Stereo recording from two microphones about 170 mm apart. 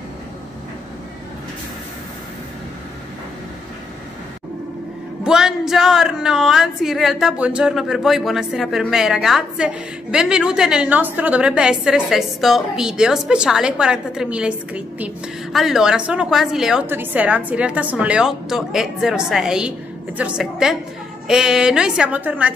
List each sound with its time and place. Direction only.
5.2 s a woman's voice: 5° right (ahead or behind)